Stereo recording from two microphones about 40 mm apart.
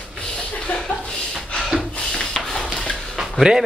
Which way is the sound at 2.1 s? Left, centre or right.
Centre.